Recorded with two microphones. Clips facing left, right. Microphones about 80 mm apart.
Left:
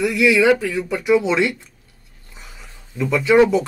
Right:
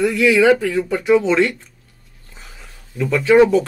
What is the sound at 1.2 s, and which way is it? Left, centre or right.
Speech, centre.